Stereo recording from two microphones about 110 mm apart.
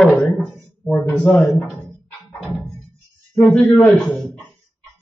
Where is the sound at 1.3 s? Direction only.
Centre (ahead or behind).